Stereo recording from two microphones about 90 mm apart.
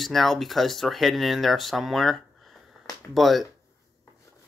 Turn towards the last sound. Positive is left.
turn(degrees=0)  # may be behind; listen again after turning